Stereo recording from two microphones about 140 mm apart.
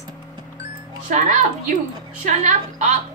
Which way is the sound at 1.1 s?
60° right (ahead or behind).